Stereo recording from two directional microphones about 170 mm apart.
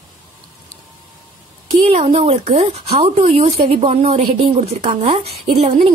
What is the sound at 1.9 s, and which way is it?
A woman's voice, 35° right (ahead or behind).